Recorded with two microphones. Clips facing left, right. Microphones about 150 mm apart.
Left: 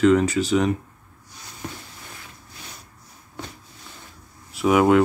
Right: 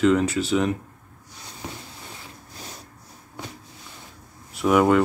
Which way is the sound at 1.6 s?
15° right (ahead or behind).